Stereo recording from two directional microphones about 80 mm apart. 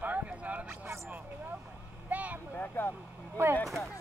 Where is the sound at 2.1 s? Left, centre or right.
Centre.